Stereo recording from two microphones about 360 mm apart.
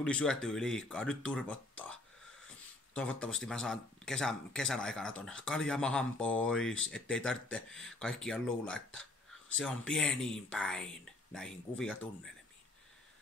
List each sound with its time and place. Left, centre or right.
0.0 s speech: centre